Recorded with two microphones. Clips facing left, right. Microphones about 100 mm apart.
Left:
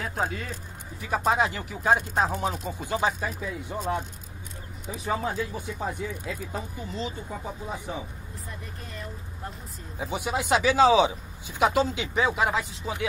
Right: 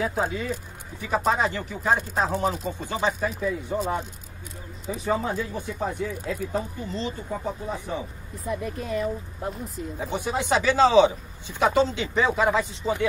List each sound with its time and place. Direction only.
0.0 s speech: 5° right (ahead or behind)
5.0 s speech: centre (ahead or behind)
8.5 s speech: 80° right
9.9 s a man's voice: 5° left (ahead or behind)